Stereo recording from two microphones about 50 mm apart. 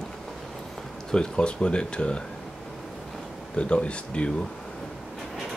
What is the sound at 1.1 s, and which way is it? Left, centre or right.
Speech, centre.